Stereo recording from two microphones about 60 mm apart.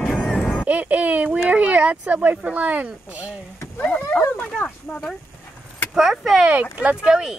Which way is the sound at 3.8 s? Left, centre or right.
Left.